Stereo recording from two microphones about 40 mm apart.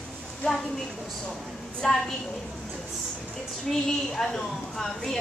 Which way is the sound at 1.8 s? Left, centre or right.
Centre.